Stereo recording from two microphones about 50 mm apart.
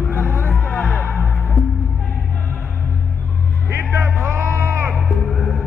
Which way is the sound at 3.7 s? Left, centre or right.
Right.